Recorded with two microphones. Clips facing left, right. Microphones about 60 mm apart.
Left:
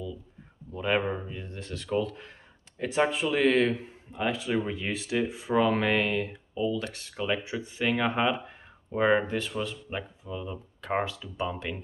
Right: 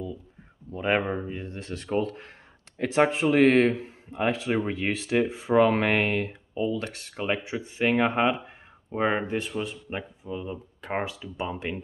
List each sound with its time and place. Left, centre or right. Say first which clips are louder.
0.7 s a sound: right 2 dB; right
1.2 s speech: right 4 dB; right
2.8 s speech: right 4 dB; right
8.9 s speech: left 1 dB; centre